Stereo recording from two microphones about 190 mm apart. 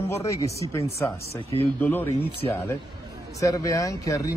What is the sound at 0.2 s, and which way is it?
Speech, 15° left (ahead or behind).